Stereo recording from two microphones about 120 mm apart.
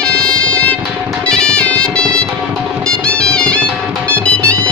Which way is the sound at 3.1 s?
10° left (ahead or behind).